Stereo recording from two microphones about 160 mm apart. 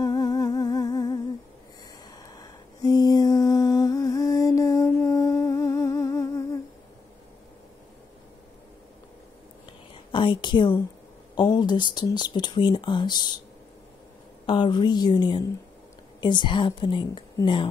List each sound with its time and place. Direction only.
0.0 s music: 25° left (ahead or behind)
2.2 s humming: 25° left (ahead or behind)
10.1 s a woman's voice: 30° left (ahead or behind)
14.4 s speech: 30° left (ahead or behind)